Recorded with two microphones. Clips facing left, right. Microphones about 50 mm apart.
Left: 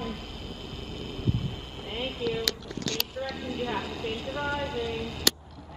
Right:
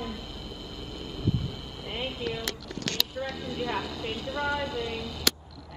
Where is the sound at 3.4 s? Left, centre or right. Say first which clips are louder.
Even; left.